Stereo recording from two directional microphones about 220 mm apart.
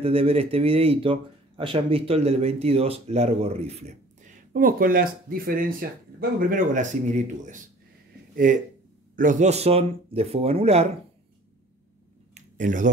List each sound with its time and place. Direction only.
0.0 s speech: 25° right (ahead or behind)
8.5 s speech: 35° right (ahead or behind)
12.4 s a sound: 35° right (ahead or behind)